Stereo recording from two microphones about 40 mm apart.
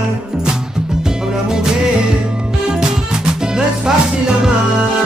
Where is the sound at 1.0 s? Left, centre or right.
Centre.